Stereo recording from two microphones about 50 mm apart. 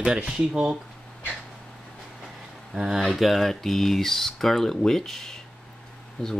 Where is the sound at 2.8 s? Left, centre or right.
Centre.